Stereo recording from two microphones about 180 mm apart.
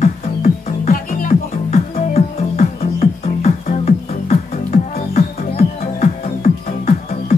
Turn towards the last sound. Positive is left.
turn(degrees=40)  # may be behind; listen again after turning